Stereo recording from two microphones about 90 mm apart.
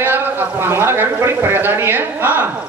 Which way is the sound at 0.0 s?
25° right (ahead or behind).